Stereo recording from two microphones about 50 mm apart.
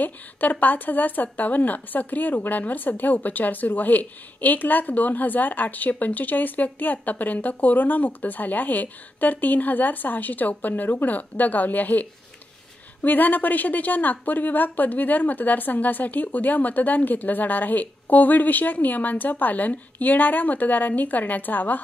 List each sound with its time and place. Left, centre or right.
0.0 s speech: left